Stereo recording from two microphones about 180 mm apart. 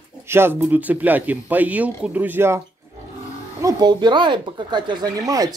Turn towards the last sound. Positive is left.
turn(degrees=-20)  # may be behind; listen again after turning